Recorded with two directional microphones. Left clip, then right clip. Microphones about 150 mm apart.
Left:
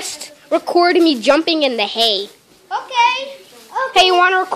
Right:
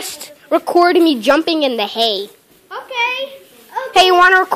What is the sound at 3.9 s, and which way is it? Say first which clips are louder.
Speech: right 3 dB; 15° right (ahead or behind).